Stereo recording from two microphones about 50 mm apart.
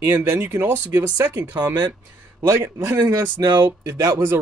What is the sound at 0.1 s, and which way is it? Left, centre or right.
Speech, right.